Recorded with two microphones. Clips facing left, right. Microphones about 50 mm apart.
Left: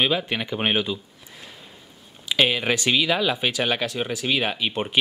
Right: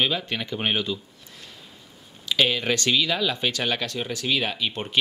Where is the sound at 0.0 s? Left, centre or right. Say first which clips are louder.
Left 2 dB; centre.